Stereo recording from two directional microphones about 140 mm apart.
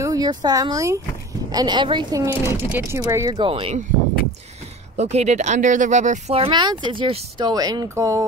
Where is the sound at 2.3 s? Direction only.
15° right (ahead or behind).